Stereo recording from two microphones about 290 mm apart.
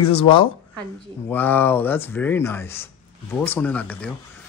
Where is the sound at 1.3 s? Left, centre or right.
Centre.